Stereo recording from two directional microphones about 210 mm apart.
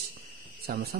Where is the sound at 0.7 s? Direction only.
45° right (ahead or behind).